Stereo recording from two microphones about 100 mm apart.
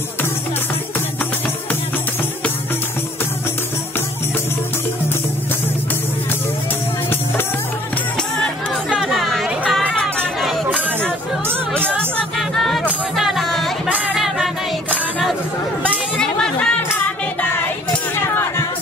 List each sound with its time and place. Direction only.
8.8 s chatter: 5° right (ahead or behind)
9.7 s music: centre (ahead or behind)
10.4 s chatter: centre (ahead or behind)
12.4 s music: centre (ahead or behind)
16.2 s a sound: 5° left (ahead or behind)
16.9 s child singing: 20° left (ahead or behind)
18.1 s a sound: 25° left (ahead or behind)